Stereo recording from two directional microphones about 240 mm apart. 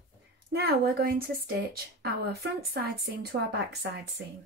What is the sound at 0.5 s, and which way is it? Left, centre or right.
Speech, right.